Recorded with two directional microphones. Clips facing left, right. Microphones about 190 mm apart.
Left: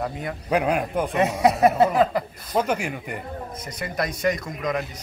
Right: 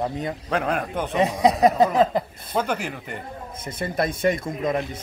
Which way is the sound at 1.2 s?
15° right (ahead or behind).